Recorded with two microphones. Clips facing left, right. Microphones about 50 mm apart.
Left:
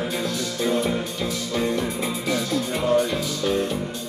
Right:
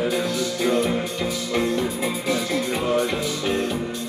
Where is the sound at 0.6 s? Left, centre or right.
Right.